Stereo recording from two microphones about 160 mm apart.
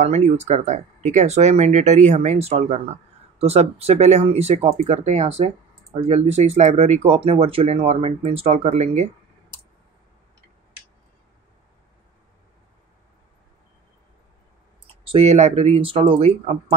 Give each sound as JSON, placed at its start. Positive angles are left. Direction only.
{"t": 0.0, "sound": "speech", "side_deg": -45}
{"t": 15.0, "sound": "speech", "side_deg": -40}